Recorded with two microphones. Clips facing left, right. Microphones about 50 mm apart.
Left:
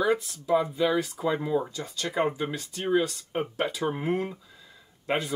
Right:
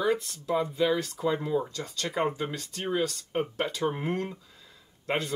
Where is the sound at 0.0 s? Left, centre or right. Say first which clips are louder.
Left 2 dB; centre.